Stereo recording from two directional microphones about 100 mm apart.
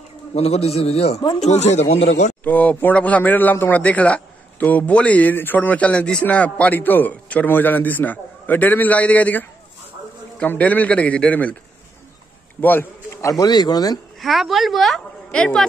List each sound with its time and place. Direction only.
0.3 s a man's voice: 90° left
2.4 s a man's voice: 15° left (ahead or behind)
12.5 s a man's voice: 20° left (ahead or behind)
13.3 s speech: 40° left (ahead or behind)
14.2 s a woman's voice: centre (ahead or behind)